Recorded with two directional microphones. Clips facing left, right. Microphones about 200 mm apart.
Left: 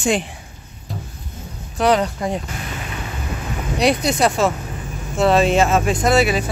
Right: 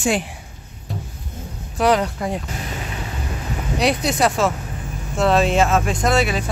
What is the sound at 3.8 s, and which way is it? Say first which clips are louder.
Speech: left 2 dB; centre (ahead or behind).